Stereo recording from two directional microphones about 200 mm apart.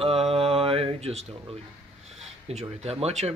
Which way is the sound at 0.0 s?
30° right (ahead or behind).